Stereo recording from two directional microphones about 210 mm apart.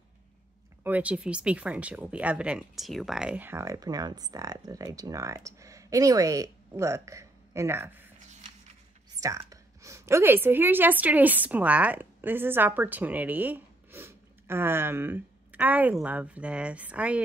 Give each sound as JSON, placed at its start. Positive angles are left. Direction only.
{"t": 0.8, "sound": "speech", "side_deg": -5}
{"t": 9.2, "sound": "a woman's voice", "side_deg": -15}